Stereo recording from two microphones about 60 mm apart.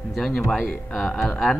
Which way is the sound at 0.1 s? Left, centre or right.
Centre.